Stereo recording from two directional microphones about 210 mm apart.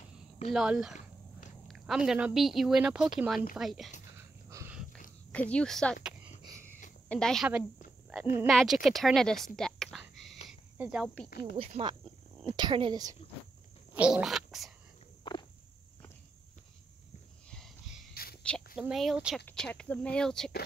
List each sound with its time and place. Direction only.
0.5 s speech: centre (ahead or behind)
4.5 s a sound: 15° right (ahead or behind)
5.3 s speech: 5° left (ahead or behind)
7.1 s speech: 5° left (ahead or behind)
10.8 s cricket: 5° right (ahead or behind)
11.2 s speech: 45° left (ahead or behind)
11.5 s speech: 25° right (ahead or behind)
13.9 s speech: 5° right (ahead or behind)
15.3 s walk: 20° left (ahead or behind)
18.1 s a sound: 45° left (ahead or behind)
18.8 s speech: centre (ahead or behind)